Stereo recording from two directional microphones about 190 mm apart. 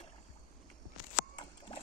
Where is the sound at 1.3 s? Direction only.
25° left (ahead or behind).